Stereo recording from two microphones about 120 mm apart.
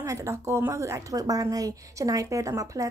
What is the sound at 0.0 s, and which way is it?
A woman's voice, 25° right (ahead or behind).